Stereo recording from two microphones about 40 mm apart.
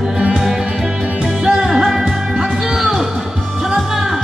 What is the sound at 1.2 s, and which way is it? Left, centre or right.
Music, centre.